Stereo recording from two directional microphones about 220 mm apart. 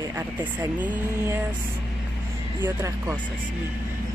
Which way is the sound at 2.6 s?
10° right (ahead or behind).